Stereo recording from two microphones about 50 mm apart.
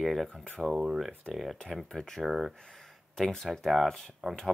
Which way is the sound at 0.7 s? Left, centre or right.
Centre.